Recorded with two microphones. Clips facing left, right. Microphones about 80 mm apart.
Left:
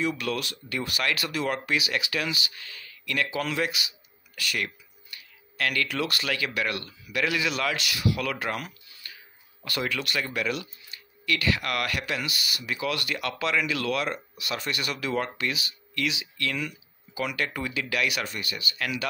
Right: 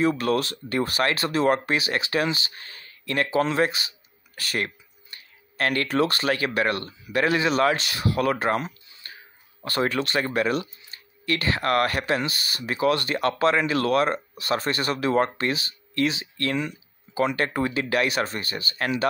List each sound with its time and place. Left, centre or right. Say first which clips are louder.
0.0 s speech: right 6 dB; right